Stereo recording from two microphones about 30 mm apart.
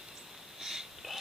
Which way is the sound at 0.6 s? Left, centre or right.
Centre.